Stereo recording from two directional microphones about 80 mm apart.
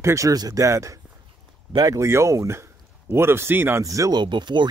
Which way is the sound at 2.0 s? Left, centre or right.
Right.